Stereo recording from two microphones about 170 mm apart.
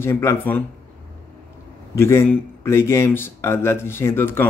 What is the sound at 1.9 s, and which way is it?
Speech, 15° left (ahead or behind).